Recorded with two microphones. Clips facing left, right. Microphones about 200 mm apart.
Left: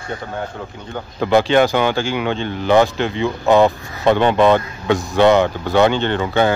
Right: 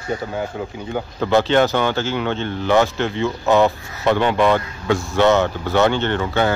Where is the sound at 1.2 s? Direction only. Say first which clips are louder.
Left 2 dB; 15° left (ahead or behind).